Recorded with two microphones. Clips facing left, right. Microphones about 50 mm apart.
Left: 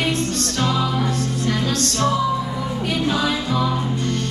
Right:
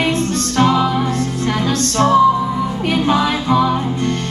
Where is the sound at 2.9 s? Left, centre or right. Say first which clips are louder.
Right 5 dB; right.